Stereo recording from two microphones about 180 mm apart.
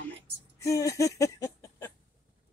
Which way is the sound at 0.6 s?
15° left (ahead or behind).